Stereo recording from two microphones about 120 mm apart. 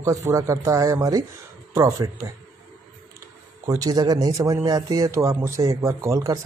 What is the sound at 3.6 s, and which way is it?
Speech, 30° right (ahead or behind).